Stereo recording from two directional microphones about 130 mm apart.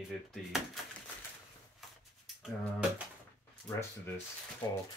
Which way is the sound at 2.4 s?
10° right (ahead or behind).